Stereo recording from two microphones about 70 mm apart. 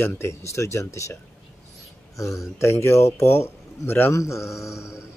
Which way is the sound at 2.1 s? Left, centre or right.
Left.